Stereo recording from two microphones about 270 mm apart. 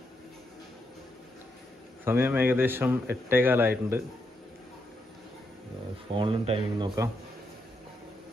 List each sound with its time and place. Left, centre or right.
2.0 s a man's voice: centre
6.1 s speech: centre